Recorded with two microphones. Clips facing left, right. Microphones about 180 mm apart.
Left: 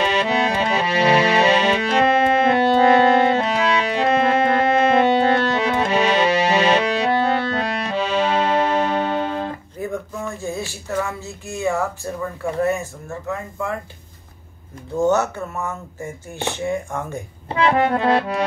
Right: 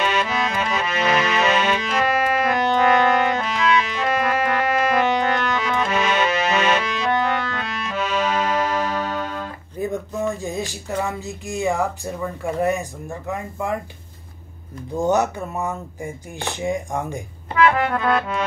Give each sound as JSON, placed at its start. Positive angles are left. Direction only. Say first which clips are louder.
{"t": 0.0, "sound": "accordion", "louder": "left 3 dB", "side_deg": 35}
{"t": 10.4, "sound": "music", "louder": "even", "side_deg": -15}
{"t": 15.0, "sound": "speech", "louder": "left 1 dB", "side_deg": -15}
{"t": 17.5, "sound": "accordion", "louder": "left 1 dB", "side_deg": 30}